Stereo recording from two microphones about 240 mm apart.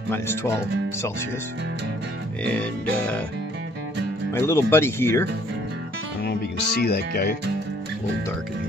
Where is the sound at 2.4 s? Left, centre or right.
Centre.